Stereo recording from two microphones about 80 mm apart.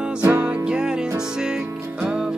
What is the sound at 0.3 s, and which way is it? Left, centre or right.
Music, centre.